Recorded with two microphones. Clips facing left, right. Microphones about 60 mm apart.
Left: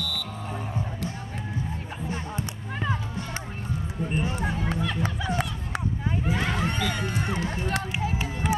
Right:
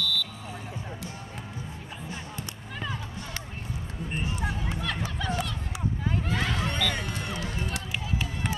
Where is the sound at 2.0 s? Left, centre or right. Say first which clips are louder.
Left 7 dB; left.